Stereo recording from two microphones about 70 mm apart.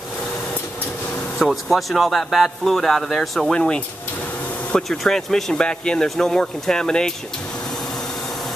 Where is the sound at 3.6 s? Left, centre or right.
Centre.